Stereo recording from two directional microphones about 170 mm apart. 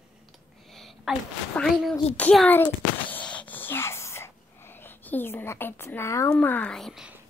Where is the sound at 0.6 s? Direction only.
Centre (ahead or behind).